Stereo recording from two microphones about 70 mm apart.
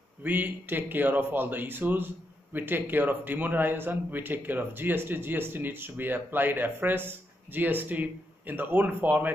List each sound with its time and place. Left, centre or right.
0.2 s speech: right